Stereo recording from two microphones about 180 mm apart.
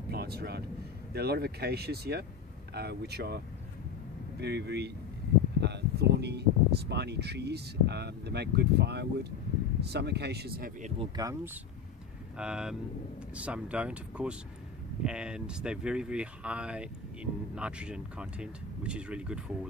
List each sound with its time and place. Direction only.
0.1 s speech: 60° right (ahead or behind)
11.0 s speech: 20° right (ahead or behind)
12.4 s speech: 5° right (ahead or behind)